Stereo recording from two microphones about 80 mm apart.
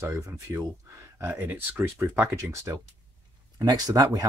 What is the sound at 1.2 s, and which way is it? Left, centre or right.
Speech, right.